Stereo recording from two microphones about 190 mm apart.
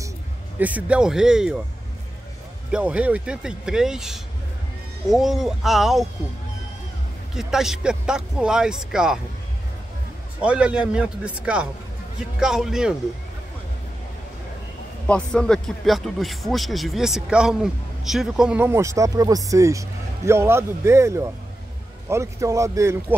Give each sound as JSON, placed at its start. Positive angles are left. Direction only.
{"t": 0.6, "sound": "speech", "side_deg": -10}
{"t": 2.7, "sound": "speech", "side_deg": -5}
{"t": 7.3, "sound": "speech", "side_deg": 0}
{"t": 10.4, "sound": "speech", "side_deg": -5}
{"t": 15.0, "sound": "speech", "side_deg": 5}